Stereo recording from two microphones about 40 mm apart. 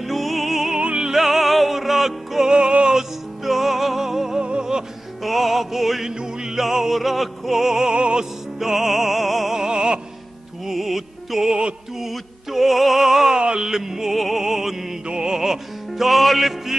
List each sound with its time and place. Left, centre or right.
0.0 s music: centre
2.5 s music: right
3.0 s music: centre
4.4 s music: right
5.2 s music: centre
6.0 s music: centre
6.6 s opera: centre
8.2 s music: centre
9.6 s opera: right
10.7 s music: centre
12.0 s opera: centre
13.4 s opera: right
15.0 s music: right
15.3 s music: centre